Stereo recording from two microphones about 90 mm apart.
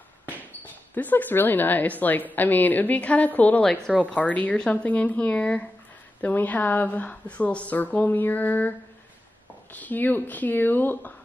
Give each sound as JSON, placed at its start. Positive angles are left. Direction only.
{"t": 0.9, "sound": "a woman's voice", "side_deg": 20}